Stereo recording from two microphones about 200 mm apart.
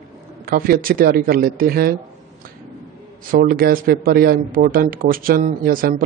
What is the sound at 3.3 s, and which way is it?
A man's voice, 50° right (ahead or behind).